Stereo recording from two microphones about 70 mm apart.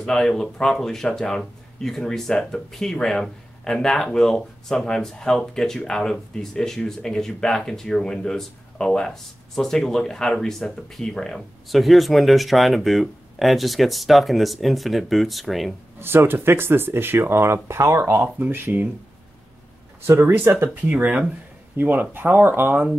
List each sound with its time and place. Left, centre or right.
0.0 s speech: centre
16.0 s speech: right
20.1 s speech: right
20.7 s speech: right
21.7 s speech: right